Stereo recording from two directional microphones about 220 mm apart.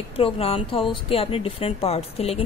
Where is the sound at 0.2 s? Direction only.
25° left (ahead or behind).